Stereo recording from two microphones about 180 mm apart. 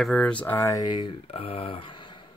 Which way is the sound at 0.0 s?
5° left (ahead or behind).